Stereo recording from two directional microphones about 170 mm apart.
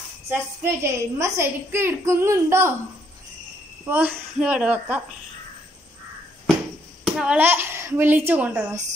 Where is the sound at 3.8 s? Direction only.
10° right (ahead or behind).